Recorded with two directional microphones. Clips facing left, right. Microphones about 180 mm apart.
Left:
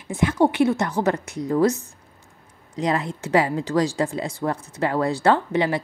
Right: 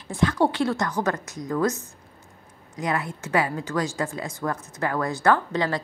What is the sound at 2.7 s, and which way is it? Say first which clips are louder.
A woman's voice: left 4 dB; 30° left (ahead or behind).